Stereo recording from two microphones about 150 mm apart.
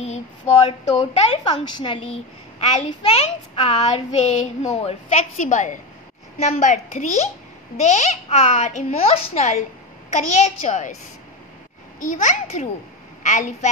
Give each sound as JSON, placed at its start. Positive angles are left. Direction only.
{"t": 0.0, "sound": "speech", "side_deg": 45}
{"t": 0.9, "sound": "a woman's voice", "side_deg": 35}
{"t": 2.6, "sound": "a woman's voice", "side_deg": 45}
{"t": 12.0, "sound": "a woman's voice", "side_deg": 60}